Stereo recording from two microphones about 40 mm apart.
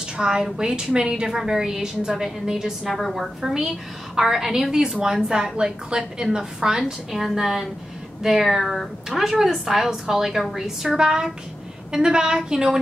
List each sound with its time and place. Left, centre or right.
0.2 s a woman's voice: centre
2.9 s a woman's voice: centre
3.5 s speech: centre
6.8 s a woman's voice: centre